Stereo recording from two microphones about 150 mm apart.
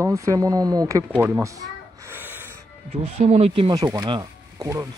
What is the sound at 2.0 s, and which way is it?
Snort, 15° right (ahead or behind).